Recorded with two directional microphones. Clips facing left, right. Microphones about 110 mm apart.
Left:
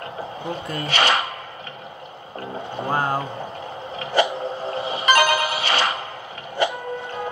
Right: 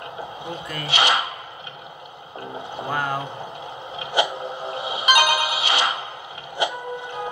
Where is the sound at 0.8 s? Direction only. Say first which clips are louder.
Left 1 dB; 15° right (ahead or behind).